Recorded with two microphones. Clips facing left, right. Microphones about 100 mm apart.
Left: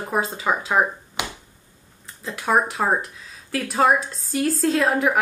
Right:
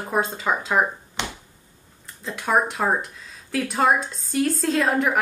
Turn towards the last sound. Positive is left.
turn(degrees=0)  # may be behind; listen again after turning